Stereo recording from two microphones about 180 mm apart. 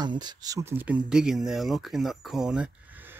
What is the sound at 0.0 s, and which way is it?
Speech, 25° right (ahead or behind).